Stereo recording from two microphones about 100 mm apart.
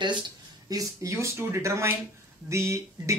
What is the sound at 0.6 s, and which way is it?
Speech, 35° right (ahead or behind).